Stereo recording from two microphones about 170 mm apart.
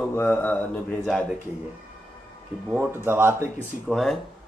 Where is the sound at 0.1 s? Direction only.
10° left (ahead or behind).